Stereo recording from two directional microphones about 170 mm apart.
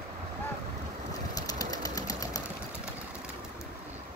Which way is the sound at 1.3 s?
20° left (ahead or behind).